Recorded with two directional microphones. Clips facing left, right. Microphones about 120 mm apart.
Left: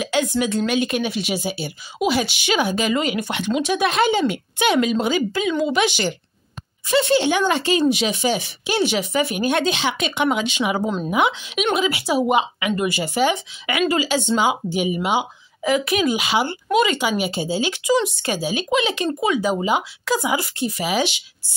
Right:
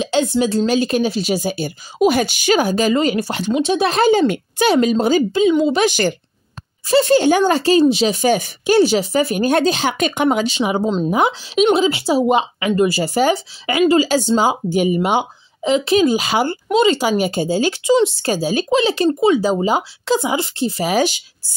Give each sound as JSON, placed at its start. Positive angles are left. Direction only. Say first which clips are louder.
{"t": 0.0, "sound": "speech", "louder": "right 4 dB", "side_deg": -30}
{"t": 5.3, "sound": "speech", "louder": "right 7 dB", "side_deg": -20}
{"t": 5.7, "sound": "a woman's voice", "louder": "right 4 dB", "side_deg": -40}
{"t": 11.1, "sound": "speech", "louder": "right 3 dB", "side_deg": -35}
{"t": 15.6, "sound": "speech", "louder": "right 5 dB", "side_deg": -25}
{"t": 16.7, "sound": "speech", "louder": "right 4 dB", "side_deg": -30}
{"t": 17.8, "sound": "speech", "louder": "right 5 dB", "side_deg": -30}